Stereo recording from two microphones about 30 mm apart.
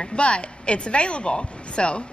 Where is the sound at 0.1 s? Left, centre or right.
Left.